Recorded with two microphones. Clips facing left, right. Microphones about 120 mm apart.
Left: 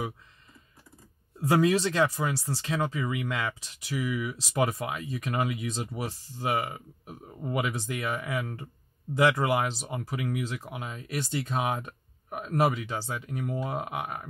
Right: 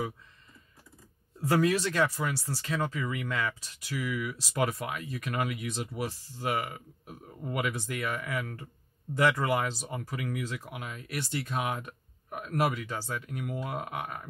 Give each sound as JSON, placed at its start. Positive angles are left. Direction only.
{"t": 1.5, "sound": "speech", "side_deg": 20}